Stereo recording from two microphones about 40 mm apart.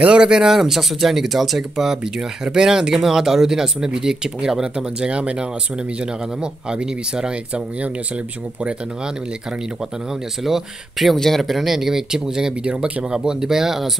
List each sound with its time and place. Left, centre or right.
0.0 s speech: right
0.5 s speech: centre
4.7 s speech: right
10.4 s speech: centre
11.1 s speech: centre